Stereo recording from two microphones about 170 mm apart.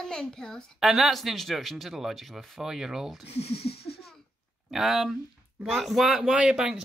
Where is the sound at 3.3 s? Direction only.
35° left (ahead or behind).